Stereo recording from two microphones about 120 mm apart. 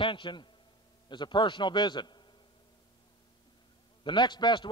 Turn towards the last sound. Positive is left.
turn(degrees=40)  # may be behind; listen again after turning